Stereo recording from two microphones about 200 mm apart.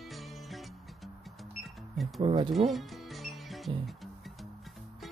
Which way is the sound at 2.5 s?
Centre (ahead or behind).